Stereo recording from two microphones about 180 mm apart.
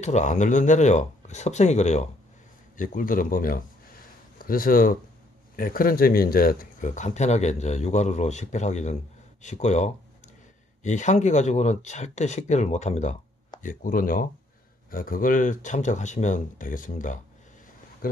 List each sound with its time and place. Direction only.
0.0 s speech: 40° left (ahead or behind)
9.4 s a sound: 40° left (ahead or behind)
10.8 s speech: 40° left (ahead or behind)